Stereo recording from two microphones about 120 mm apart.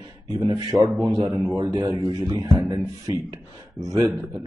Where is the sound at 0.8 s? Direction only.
15° right (ahead or behind).